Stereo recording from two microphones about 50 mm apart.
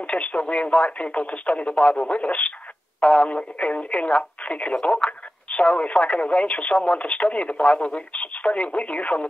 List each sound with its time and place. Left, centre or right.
0.0 s speech: left